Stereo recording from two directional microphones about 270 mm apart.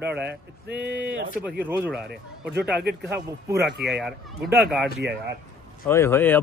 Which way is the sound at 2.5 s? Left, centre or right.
Right.